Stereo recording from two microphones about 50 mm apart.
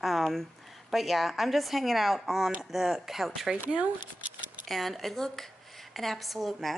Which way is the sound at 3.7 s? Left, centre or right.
Right.